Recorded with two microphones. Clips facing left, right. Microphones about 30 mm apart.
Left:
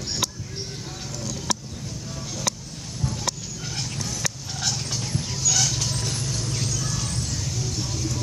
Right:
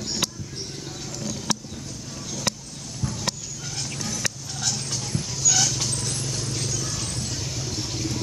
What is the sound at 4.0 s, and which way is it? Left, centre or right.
Vehicle, centre.